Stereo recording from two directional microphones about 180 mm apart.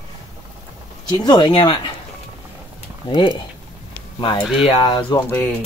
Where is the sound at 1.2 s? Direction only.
25° left (ahead or behind).